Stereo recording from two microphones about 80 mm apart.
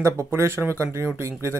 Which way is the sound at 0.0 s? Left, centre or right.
Right.